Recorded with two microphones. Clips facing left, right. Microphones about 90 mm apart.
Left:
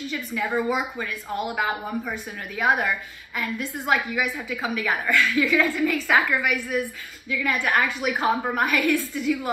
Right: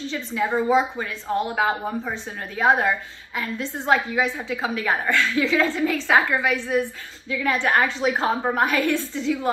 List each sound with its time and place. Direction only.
0.0 s a woman's voice: 25° right (ahead or behind)